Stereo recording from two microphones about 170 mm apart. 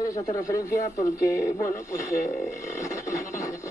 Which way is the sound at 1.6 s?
15° left (ahead or behind).